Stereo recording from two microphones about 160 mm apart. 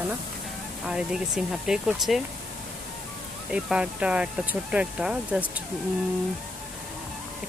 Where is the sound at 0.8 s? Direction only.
5° right (ahead or behind).